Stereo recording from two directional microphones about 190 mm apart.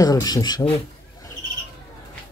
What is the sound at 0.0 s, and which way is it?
Speech, 20° left (ahead or behind).